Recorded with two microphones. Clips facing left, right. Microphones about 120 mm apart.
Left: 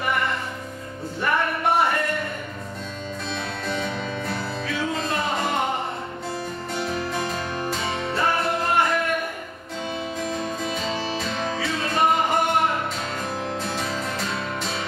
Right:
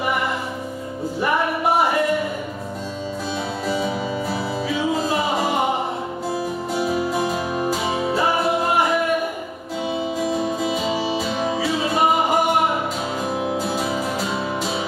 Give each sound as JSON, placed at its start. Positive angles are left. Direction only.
{"t": 1.2, "sound": "music", "side_deg": -10}
{"t": 3.6, "sound": "music", "side_deg": -5}